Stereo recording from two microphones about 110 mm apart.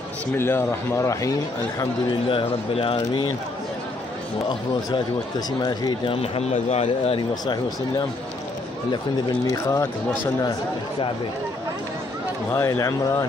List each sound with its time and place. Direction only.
0.4 s speech: 20° left (ahead or behind)
2.2 s speech: 55° left (ahead or behind)
5.6 s speech: 35° left (ahead or behind)
6.0 s a man's voice: 70° left (ahead or behind)
7.2 s speech: 40° left (ahead or behind)
9.5 s speech: 30° left (ahead or behind)
12.5 s speech: 25° left (ahead or behind)